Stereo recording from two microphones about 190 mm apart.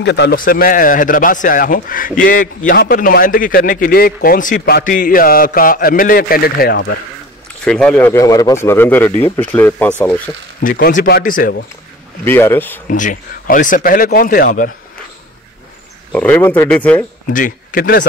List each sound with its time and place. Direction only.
0.0 s a man's voice: 65° left (ahead or behind)
7.6 s speech: 5° left (ahead or behind)
10.6 s a man's voice: 45° left (ahead or behind)
12.3 s speech: 10° left (ahead or behind)
12.9 s a man's voice: 45° left (ahead or behind)
16.1 s speech: 5° left (ahead or behind)
17.3 s a man's voice: 45° left (ahead or behind)